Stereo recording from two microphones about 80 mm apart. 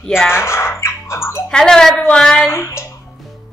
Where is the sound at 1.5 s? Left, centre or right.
Centre.